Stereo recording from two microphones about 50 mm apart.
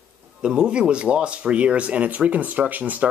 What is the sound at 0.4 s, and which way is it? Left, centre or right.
Speech, centre.